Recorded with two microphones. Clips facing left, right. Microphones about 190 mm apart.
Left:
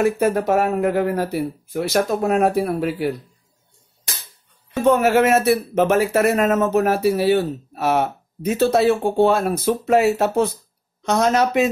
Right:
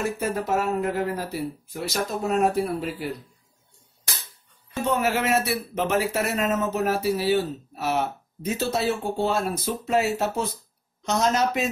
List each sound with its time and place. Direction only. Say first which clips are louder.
0.0 s a man's voice: left 9 dB; 65° left (ahead or behind)
4.8 s a man's voice: left 9 dB; 55° left (ahead or behind)